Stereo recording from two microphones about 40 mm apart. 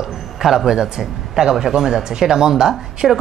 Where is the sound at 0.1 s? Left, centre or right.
Centre.